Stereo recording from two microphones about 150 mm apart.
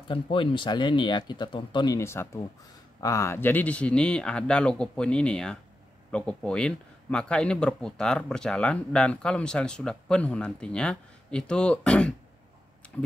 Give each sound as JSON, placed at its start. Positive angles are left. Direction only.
{"t": 0.1, "sound": "speech", "side_deg": 35}
{"t": 2.0, "sound": "speech", "side_deg": 15}